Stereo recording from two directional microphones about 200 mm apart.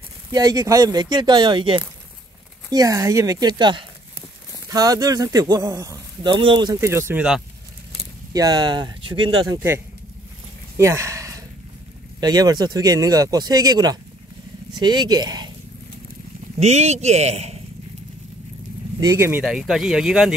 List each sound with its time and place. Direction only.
0.3 s speech: 20° right (ahead or behind)
8.3 s speech: 20° right (ahead or behind)
10.8 s a sound: 15° right (ahead or behind)
12.2 s speech: 20° right (ahead or behind)
16.5 s a man's voice: 35° right (ahead or behind)
18.9 s speech: 15° right (ahead or behind)